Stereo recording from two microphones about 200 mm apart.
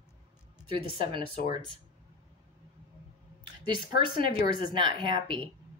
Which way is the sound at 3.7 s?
25° right (ahead or behind).